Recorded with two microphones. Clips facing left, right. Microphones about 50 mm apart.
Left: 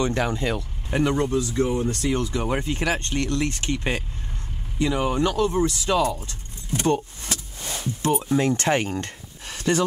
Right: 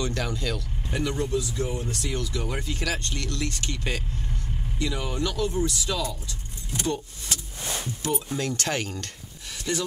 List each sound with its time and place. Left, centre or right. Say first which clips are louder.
0.0 s speech: left 6 dB; left
7.6 s music: left 2 dB; centre
8.0 s speech: left 8 dB; left
9.5 s a sound: left 7 dB; left